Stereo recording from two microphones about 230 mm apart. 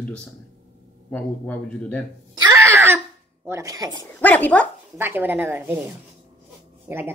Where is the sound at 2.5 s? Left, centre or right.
Centre.